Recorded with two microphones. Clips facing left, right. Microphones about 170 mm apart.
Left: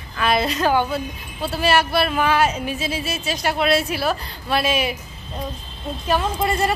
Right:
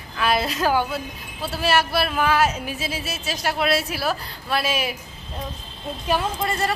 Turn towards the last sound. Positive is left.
turn(degrees=15)  # may be behind; listen again after turning